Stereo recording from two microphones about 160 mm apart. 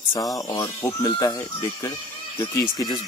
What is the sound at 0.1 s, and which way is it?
Speech, 20° left (ahead or behind).